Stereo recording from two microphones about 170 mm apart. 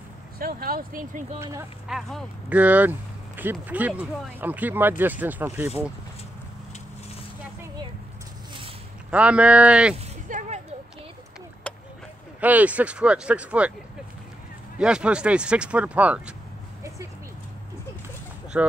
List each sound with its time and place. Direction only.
0.4 s speech: 60° right (ahead or behind)
1.4 s speech: 15° right (ahead or behind)
1.9 s speech: centre (ahead or behind)
9.1 s speech: 5° right (ahead or behind)
10.2 s a sound: 45° right (ahead or behind)
11.7 s a sound: 5° left (ahead or behind)
12.4 s speech: 10° right (ahead or behind)
14.8 s speech: 5° right (ahead or behind)
18.5 s speech: 10° right (ahead or behind)